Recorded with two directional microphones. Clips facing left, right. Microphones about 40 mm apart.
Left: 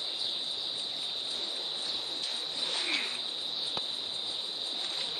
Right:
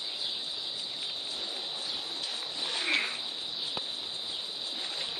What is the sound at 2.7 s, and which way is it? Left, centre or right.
Cricket, right.